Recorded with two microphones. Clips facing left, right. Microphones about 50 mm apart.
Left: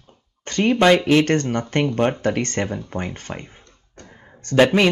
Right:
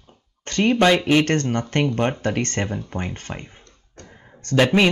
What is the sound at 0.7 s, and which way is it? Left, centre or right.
Speech, centre.